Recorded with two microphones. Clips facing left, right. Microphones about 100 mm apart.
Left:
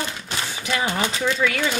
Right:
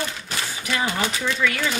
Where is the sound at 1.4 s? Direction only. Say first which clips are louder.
Even; 25° left (ahead or behind).